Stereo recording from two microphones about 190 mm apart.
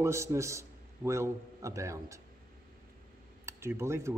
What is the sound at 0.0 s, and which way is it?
A man's voice, 15° right (ahead or behind).